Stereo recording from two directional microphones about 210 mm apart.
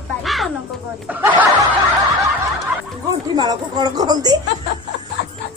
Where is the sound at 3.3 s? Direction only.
20° right (ahead or behind).